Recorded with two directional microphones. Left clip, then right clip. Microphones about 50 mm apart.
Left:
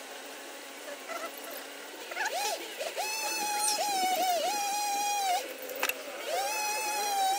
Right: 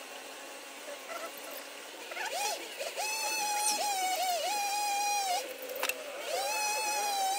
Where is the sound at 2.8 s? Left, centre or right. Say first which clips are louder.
Even; centre.